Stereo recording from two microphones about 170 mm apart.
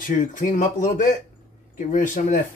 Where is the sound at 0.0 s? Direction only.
50° left (ahead or behind).